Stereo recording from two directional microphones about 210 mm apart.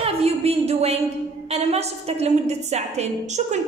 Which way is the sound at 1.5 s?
30° right (ahead or behind).